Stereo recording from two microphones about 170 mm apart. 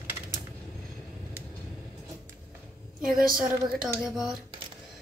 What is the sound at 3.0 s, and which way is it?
Speech, centre (ahead or behind).